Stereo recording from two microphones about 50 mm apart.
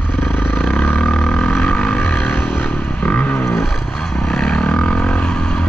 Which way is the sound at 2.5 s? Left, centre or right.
Left.